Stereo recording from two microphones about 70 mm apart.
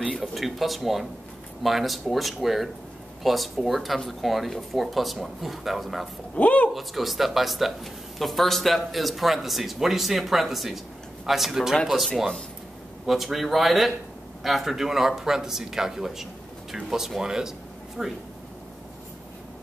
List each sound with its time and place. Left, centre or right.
0.2 s speech: centre
6.3 s speech: centre
6.7 s speech: centre
13.0 s speech: centre